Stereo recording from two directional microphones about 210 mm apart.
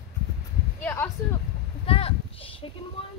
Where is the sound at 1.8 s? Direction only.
25° left (ahead or behind).